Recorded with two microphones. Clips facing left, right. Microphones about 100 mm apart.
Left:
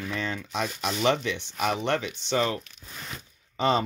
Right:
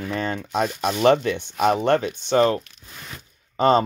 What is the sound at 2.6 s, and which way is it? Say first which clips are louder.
Speech: even; centre (ahead or behind).